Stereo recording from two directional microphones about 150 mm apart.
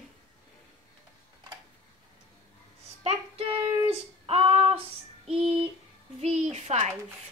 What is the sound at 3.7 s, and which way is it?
Child singing, 40° right (ahead or behind).